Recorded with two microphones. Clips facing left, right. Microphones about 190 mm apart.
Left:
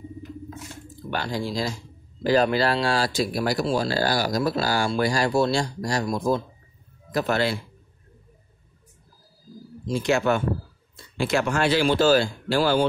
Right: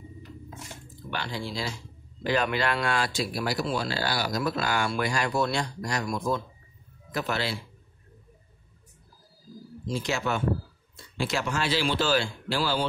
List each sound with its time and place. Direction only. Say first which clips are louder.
1.1 s speech: left 6 dB; 40° left (ahead or behind)
9.8 s speech: left 7 dB; 55° left (ahead or behind)